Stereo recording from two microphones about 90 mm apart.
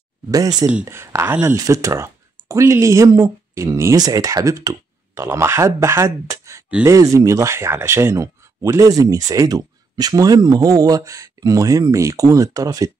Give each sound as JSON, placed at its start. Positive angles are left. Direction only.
{"t": 0.3, "sound": "speech", "side_deg": -45}
{"t": 0.8, "sound": "speech", "side_deg": -30}
{"t": 1.5, "sound": "speech", "side_deg": -40}